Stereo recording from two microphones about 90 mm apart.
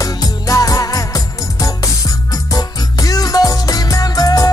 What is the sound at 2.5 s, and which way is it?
Music, 40° left (ahead or behind).